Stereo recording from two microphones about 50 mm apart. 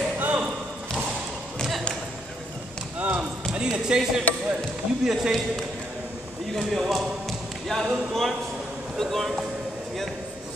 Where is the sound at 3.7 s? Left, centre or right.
Centre.